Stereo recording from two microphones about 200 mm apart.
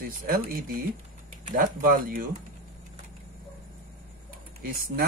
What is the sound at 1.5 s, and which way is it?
Speech, 45° right (ahead or behind).